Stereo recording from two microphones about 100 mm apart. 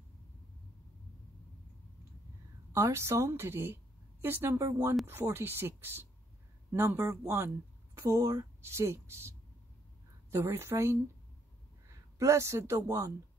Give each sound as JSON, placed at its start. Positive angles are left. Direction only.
{"t": 2.7, "sound": "a woman's voice", "side_deg": -30}
{"t": 10.3, "sound": "speech", "side_deg": -30}
{"t": 12.2, "sound": "speech", "side_deg": -30}